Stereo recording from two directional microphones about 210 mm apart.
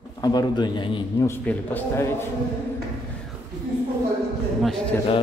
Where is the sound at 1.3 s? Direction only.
10° left (ahead or behind).